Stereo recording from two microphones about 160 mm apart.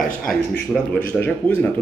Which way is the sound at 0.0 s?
5° left (ahead or behind).